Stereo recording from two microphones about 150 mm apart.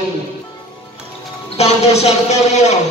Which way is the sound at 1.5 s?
45° left (ahead or behind).